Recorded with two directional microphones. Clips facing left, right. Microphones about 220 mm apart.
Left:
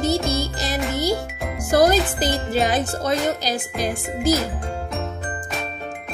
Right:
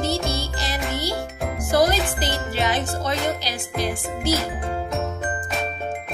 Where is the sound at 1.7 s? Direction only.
40° left (ahead or behind).